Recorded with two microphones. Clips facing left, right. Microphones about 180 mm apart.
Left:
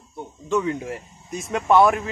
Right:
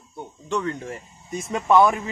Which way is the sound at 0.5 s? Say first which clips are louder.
Left 4 dB; 5° left (ahead or behind).